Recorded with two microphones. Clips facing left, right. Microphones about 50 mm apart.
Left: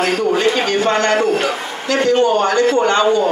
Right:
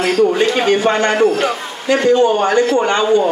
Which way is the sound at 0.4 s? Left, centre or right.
Centre.